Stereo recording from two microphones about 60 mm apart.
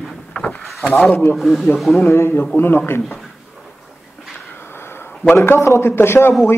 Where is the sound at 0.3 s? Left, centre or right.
Left.